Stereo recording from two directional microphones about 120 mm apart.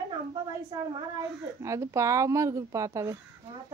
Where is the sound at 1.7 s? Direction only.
25° right (ahead or behind).